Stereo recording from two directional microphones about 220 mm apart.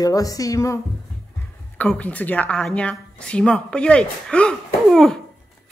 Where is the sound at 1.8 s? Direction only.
5° left (ahead or behind).